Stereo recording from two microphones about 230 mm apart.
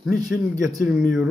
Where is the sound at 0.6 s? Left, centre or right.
Centre.